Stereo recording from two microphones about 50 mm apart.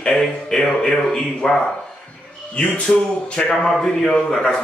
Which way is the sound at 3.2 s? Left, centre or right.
Left.